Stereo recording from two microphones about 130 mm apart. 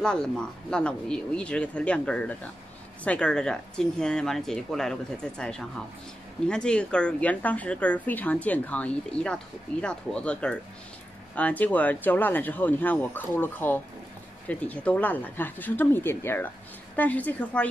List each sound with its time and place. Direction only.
0.0 s a woman's voice: 5° left (ahead or behind)
6.4 s a woman's voice: 5° left (ahead or behind)